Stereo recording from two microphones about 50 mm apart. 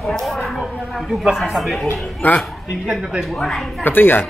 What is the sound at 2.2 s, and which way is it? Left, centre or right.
Speech, left.